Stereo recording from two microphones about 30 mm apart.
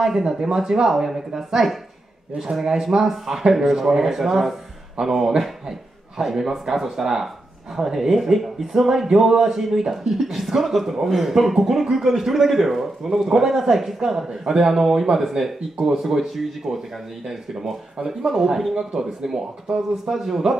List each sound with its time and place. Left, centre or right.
0.0 s speech: centre
3.0 s speech: centre
9.1 s speech: centre